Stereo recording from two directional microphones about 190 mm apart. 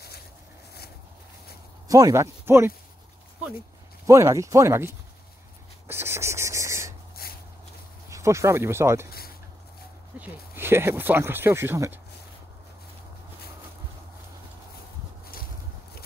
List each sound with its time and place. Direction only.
1.9 s speech: 20° right (ahead or behind)
4.0 s speech: 15° right (ahead or behind)
5.9 s a sound: 10° right (ahead or behind)
7.2 s a sound: 55° left (ahead or behind)
8.1 s speech: 15° right (ahead or behind)
10.1 s speech: 10° right (ahead or behind)